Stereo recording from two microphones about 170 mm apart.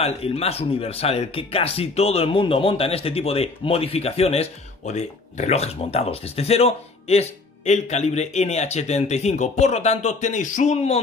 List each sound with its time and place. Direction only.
0.0 s speech: 35° left (ahead or behind)